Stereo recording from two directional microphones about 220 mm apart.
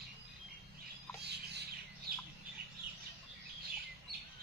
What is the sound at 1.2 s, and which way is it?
Bird, 50° right (ahead or behind).